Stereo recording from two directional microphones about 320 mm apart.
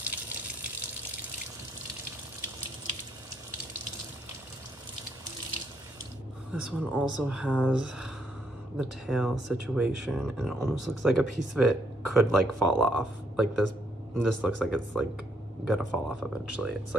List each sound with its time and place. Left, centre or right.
0.0 s water: centre
6.5 s speech: centre
13.7 s a sound: right
14.6 s speech: centre